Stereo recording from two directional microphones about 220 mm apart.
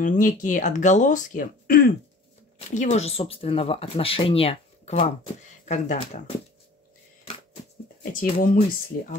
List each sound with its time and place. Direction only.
0.0 s speech: 35° left (ahead or behind)
8.0 s speech: 40° left (ahead or behind)